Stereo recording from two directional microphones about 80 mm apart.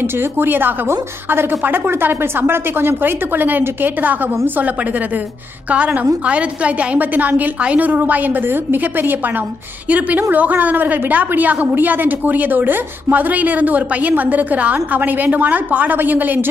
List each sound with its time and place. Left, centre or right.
0.4 s a woman's voice: right
6.2 s a woman's voice: centre
9.8 s a woman's voice: centre